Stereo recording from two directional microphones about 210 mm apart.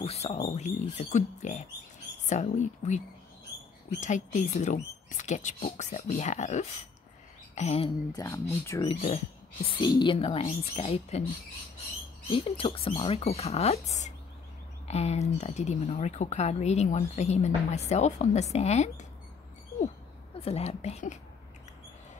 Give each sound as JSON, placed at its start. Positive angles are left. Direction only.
{"t": 0.0, "sound": "speech", "side_deg": 30}
{"t": 8.1, "sound": "speech", "side_deg": 15}
{"t": 8.8, "sound": "speech", "side_deg": 30}
{"t": 12.3, "sound": "speech", "side_deg": 25}
{"t": 20.3, "sound": "a woman's voice", "side_deg": 30}